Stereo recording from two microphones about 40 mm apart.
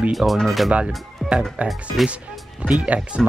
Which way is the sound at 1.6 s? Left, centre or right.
Right.